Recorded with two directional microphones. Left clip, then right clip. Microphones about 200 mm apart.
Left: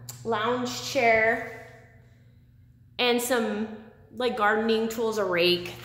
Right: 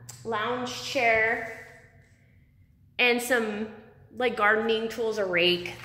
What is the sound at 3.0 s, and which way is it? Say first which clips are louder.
A woman's voice: right 1 dB; centre (ahead or behind).